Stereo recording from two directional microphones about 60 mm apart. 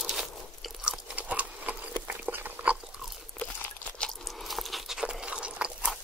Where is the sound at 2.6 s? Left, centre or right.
Right.